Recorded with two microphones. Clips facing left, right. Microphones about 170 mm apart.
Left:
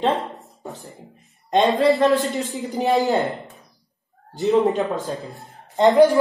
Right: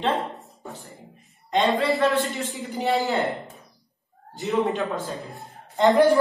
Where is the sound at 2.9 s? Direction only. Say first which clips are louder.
Left 4 dB; 20° left (ahead or behind).